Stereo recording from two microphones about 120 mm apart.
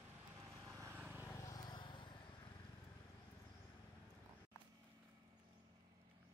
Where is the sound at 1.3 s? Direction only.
40° left (ahead or behind).